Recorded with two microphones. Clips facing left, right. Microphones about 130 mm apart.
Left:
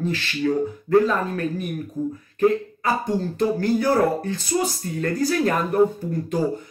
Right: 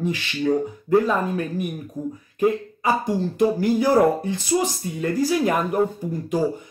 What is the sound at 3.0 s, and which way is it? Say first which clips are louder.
Speech: right 2 dB; 10° right (ahead or behind).